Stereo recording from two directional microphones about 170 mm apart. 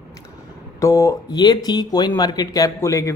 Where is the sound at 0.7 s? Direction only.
20° left (ahead or behind).